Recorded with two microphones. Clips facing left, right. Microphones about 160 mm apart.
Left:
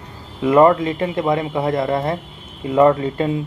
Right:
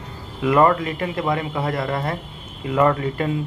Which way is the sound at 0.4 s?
25° left (ahead or behind).